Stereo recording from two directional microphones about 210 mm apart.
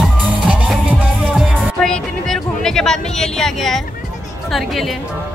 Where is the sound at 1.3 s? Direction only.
Centre (ahead or behind).